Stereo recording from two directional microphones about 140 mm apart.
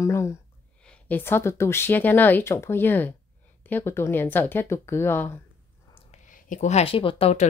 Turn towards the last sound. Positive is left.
turn(degrees=45)  # may be behind; listen again after turning